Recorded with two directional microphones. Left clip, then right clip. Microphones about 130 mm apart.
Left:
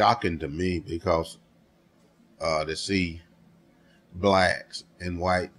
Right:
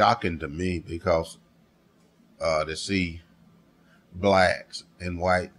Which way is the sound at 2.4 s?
40° right (ahead or behind).